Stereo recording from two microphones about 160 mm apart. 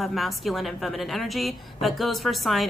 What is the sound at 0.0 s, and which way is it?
A woman's voice, centre (ahead or behind).